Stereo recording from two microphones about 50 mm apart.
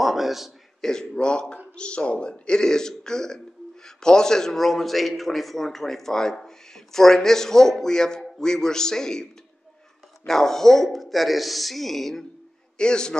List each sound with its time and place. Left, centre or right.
0.0 s a sound: centre
0.7 s a man's voice: centre
12.7 s a man's voice: centre